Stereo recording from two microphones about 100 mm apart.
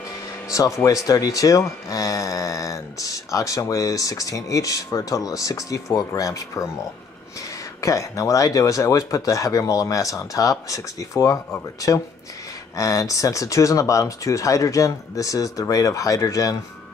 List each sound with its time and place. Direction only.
0.5 s speech: 35° left (ahead or behind)
7.8 s speech: 35° left (ahead or behind)
12.7 s speech: 35° left (ahead or behind)